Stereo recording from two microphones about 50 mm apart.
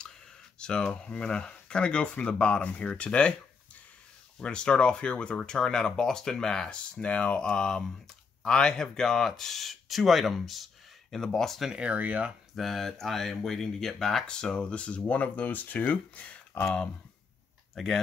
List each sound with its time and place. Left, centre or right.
0.6 s speech: centre
4.4 s speech: centre
7.0 s speech: left; by 11.1 s centre
11.1 s speech: centre
11.8 s speech: right
12.5 s speech: centre; by 16.6 s left
17.7 s speech: centre